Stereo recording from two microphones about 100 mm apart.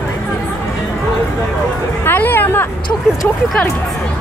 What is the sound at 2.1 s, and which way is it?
Hubbub, 20° left (ahead or behind).